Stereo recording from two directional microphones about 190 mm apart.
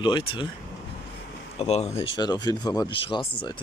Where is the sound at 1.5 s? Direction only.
35° left (ahead or behind).